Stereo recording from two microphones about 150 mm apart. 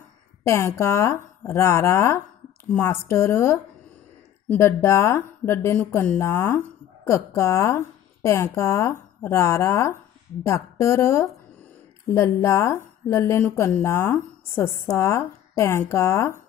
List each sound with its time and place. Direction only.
0.4 s a woman's voice: 20° left (ahead or behind)